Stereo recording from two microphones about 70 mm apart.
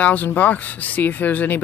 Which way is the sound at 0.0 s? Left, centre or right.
Left.